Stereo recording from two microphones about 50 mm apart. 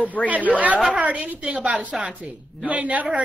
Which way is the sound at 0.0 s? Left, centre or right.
Left.